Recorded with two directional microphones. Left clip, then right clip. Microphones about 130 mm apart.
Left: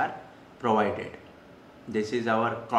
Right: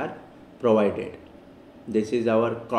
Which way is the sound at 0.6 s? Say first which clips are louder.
Right 4 dB; 25° right (ahead or behind).